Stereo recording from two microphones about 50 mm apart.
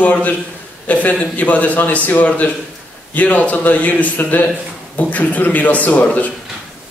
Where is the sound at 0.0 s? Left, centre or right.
Left.